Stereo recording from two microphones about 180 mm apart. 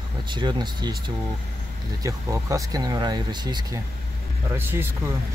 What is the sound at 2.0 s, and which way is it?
Speech, 20° right (ahead or behind).